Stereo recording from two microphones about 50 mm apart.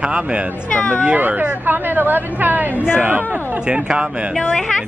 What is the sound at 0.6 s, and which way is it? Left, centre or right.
Speech, left.